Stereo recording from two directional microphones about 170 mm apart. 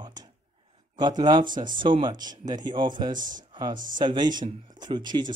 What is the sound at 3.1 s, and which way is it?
Speech, 50° right (ahead or behind).